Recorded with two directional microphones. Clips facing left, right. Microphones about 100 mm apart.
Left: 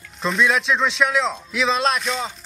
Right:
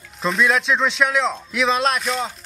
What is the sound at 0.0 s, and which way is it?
Speech, centre (ahead or behind).